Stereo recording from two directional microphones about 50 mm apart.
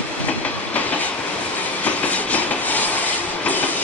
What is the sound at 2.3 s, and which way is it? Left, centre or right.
Train, left.